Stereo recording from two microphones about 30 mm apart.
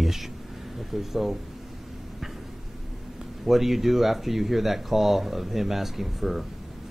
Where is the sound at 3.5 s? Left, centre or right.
Centre.